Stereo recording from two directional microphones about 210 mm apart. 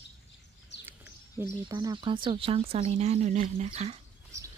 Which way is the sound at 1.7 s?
20° right (ahead or behind).